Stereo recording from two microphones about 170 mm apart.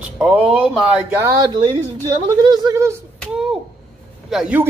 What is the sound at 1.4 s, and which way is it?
Speech, 25° right (ahead or behind).